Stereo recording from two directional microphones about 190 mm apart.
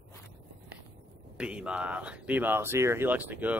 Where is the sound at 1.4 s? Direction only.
5° right (ahead or behind).